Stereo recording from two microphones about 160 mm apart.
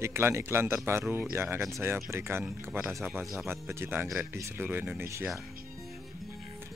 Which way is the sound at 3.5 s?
15° right (ahead or behind).